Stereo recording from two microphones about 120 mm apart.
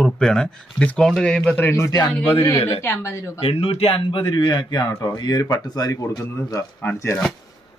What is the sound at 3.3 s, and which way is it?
Speech, 50° left (ahead or behind).